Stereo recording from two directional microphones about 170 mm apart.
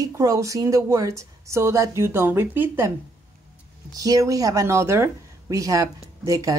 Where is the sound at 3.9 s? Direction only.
20° right (ahead or behind).